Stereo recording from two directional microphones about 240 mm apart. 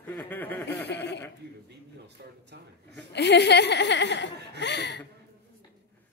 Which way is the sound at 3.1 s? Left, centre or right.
Left.